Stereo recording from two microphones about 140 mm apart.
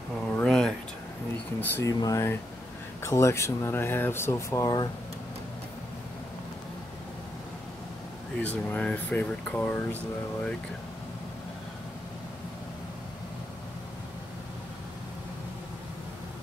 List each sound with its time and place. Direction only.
0.4 s a sound: 5° left (ahead or behind)
1.6 s speech: 15° left (ahead or behind)
8.4 s speech: 10° left (ahead or behind)